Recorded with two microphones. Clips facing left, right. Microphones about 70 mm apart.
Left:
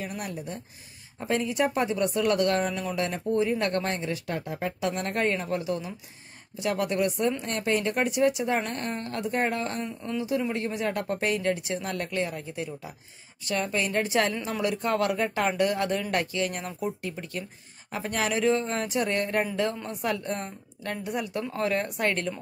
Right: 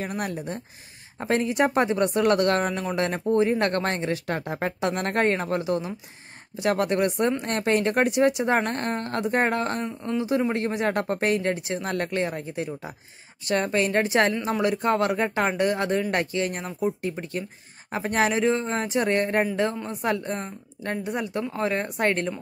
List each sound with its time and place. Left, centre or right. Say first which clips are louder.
0.2 s speech: right 5 dB; right
6.6 s speech: right 4 dB; right
9.8 s speech: right 4 dB; right
10.4 s speech: right 4 dB; right
21.4 s speech: right 1 dB; right